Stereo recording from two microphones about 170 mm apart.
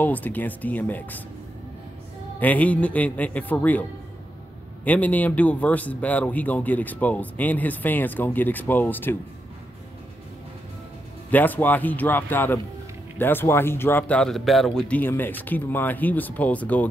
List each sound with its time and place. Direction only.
0.0 s speech: 10° left (ahead or behind)
2.4 s speech: 10° left (ahead or behind)
4.8 s speech: 10° left (ahead or behind)
11.2 s speech: 10° left (ahead or behind)